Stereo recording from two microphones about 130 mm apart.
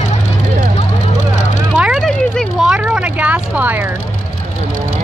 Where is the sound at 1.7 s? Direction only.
5° right (ahead or behind).